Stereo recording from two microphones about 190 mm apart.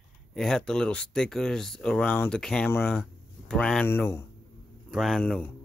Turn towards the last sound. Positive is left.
turn(degrees=5)  # may be behind; listen again after turning